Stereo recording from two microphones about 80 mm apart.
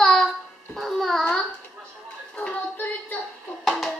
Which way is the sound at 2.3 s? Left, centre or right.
Left.